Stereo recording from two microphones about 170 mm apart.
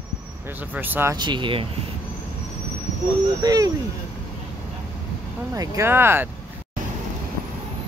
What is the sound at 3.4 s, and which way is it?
Speech, 20° right (ahead or behind).